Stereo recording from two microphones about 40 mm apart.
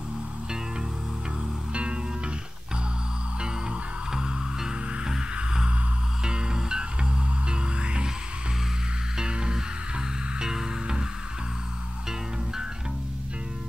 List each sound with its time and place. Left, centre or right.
1.7 s music: right
3.3 s music: centre
9.1 s music: centre